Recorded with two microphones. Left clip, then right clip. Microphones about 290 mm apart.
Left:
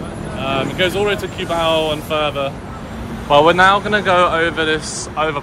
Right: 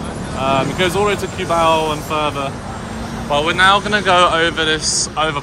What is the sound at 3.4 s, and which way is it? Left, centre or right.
Speech, centre.